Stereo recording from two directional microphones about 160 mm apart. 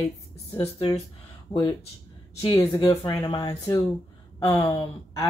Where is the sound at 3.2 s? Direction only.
25° left (ahead or behind).